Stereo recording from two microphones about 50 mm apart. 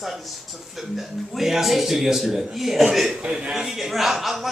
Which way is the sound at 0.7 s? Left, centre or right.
Centre.